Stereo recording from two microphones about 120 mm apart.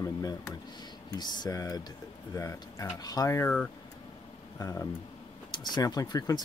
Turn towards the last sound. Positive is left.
turn(degrees=30)  # may be behind; listen again after turning